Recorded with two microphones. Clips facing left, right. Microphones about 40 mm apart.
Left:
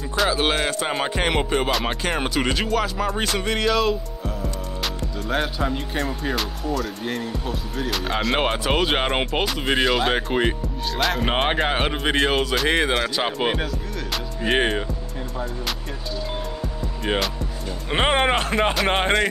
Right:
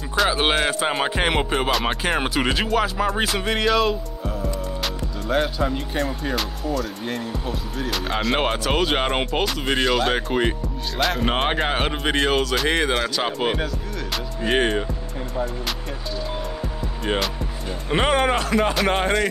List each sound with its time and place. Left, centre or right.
0.3 s music: centre
4.8 s speech: centre
17.0 s speech: centre
17.8 s speech: left